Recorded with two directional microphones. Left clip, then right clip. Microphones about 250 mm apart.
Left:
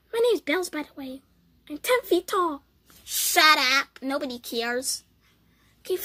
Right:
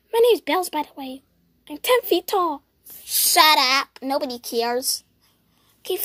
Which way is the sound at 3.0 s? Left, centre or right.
Centre.